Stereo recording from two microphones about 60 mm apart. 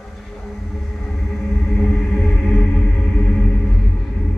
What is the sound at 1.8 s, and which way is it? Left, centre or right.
Music, centre.